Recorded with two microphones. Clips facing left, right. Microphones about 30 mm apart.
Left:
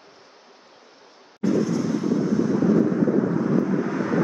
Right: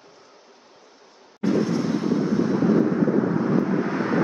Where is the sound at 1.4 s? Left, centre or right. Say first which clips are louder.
Even; right.